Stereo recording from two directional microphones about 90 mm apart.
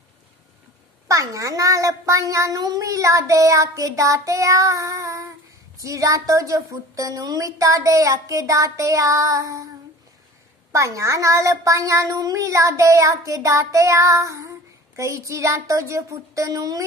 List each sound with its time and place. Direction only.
1.0 s a child's voice: 40° right (ahead or behind)
10.7 s a child's voice: 35° right (ahead or behind)